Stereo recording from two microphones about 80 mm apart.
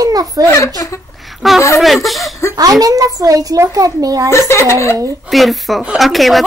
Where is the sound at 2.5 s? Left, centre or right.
Right.